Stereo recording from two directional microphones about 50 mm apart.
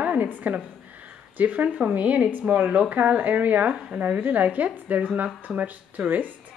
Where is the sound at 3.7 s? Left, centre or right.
Centre.